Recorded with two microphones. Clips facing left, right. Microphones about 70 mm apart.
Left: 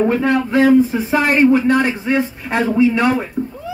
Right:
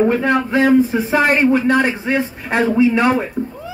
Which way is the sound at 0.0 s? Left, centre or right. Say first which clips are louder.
Even; centre.